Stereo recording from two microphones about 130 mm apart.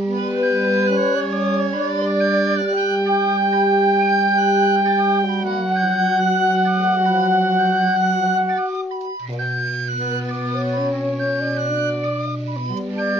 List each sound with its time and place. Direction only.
0.4 s music: 25° right (ahead or behind)
0.9 s music: centre (ahead or behind)
3.0 s music: 25° right (ahead or behind)
5.7 s music: centre (ahead or behind)